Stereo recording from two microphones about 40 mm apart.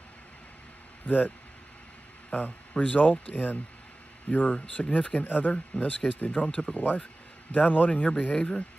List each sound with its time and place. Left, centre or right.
1.0 s speech: left
2.8 s speech: left
4.7 s speech: left
6.7 s speech: left